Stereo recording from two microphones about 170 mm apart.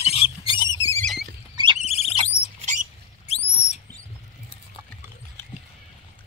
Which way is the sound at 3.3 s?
40° left (ahead or behind).